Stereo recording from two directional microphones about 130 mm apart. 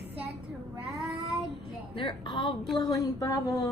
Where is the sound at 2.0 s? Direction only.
40° left (ahead or behind).